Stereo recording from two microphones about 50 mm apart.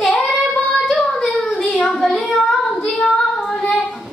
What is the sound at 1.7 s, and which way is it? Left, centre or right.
Child singing, centre.